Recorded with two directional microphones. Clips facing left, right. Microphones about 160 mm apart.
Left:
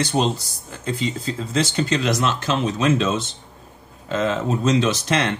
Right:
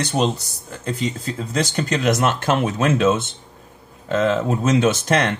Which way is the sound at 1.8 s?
50° right (ahead or behind).